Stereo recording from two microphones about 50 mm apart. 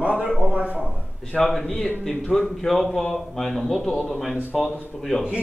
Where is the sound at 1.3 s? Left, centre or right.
Centre.